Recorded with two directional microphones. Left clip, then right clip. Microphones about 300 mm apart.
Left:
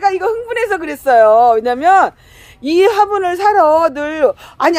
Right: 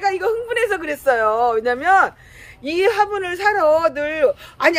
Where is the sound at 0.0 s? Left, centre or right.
Centre.